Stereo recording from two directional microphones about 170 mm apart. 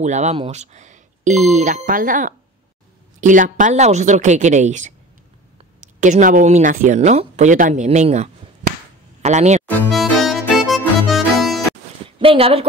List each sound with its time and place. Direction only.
0.0 s speech: 45° right (ahead or behind)
5.9 s speech: 45° right (ahead or behind)
9.9 s music: centre (ahead or behind)
11.1 s accordion: centre (ahead or behind)
12.2 s speech: 35° right (ahead or behind)